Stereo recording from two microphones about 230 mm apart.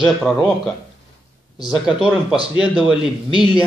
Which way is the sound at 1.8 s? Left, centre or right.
Centre.